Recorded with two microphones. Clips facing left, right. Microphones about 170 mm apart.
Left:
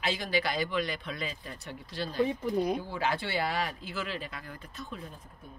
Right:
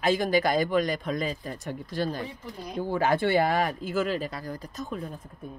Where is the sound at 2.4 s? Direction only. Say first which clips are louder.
Left 10 dB; 55° left (ahead or behind).